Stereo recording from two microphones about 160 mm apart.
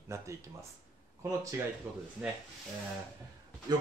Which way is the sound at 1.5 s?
15° right (ahead or behind).